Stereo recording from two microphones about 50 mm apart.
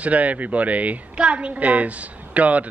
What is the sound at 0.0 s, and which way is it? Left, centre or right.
A woman's voice, right.